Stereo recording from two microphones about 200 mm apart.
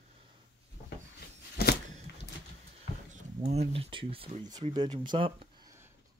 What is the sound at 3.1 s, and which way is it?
Speech, 35° right (ahead or behind).